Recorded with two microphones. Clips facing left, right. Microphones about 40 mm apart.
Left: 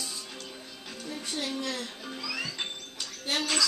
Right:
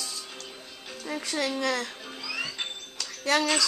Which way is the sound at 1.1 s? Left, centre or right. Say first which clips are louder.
Right 5 dB; right.